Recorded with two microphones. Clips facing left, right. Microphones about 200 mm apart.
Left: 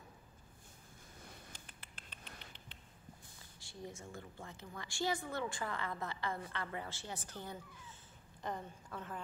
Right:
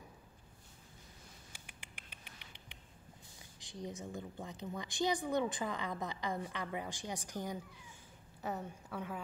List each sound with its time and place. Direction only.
1.5 s mouse: 10° right (ahead or behind)
2.4 s a sound: 10° right (ahead or behind)
3.5 s a woman's voice: 20° right (ahead or behind)